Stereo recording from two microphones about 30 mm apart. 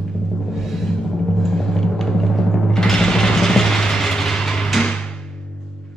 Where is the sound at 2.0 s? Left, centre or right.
Centre.